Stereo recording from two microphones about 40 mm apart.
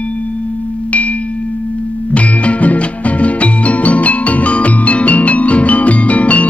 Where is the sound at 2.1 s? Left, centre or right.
Left.